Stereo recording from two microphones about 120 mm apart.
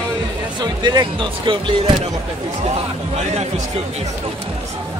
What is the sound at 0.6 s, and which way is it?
Speech, 35° right (ahead or behind).